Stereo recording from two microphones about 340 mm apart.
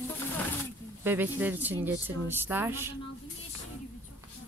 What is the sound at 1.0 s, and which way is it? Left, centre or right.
Speech, centre.